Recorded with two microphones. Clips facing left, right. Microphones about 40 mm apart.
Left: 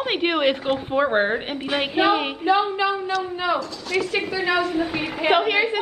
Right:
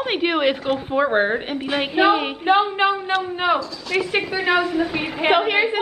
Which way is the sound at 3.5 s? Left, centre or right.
Centre.